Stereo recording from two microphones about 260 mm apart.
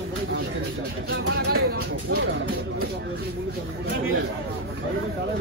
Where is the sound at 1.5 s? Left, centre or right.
Right.